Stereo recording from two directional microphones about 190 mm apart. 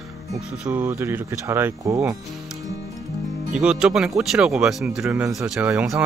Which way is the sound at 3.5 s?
5° right (ahead or behind).